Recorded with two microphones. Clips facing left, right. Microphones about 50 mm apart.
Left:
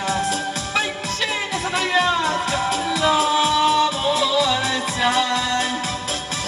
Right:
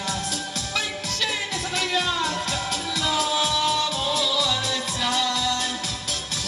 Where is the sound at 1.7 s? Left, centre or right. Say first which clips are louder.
Left 6 dB; left.